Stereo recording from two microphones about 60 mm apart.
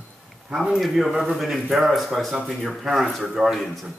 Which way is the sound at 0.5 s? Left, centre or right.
Centre.